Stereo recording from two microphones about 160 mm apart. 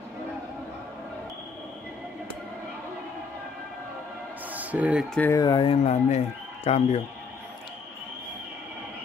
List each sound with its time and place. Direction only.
4.5 s music: 10° right (ahead or behind)
5.1 s speech: 10° left (ahead or behind)
5.4 s speech: 30° left (ahead or behind)